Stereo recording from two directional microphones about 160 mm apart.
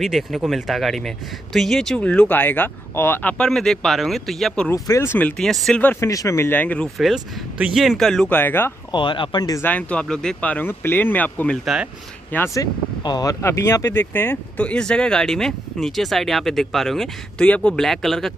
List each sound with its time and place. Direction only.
0.0 s speech: centre (ahead or behind)
4.6 s speech: 20° left (ahead or behind)
5.4 s speech: 5° left (ahead or behind)
8.9 s speech: 30° left (ahead or behind)
9.7 s speech: 10° left (ahead or behind)
11.6 s speech: 5° right (ahead or behind)
12.3 s speech: 10° left (ahead or behind)
13.0 s speech: 25° left (ahead or behind); by 18.3 s centre (ahead or behind)